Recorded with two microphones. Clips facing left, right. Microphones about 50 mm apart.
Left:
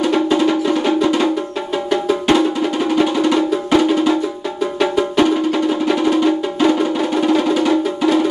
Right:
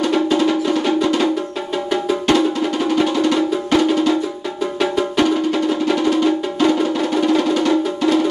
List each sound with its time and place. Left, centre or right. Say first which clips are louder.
0.0 s music: left 1 dB; centre
2.9 s music: left 2 dB; centre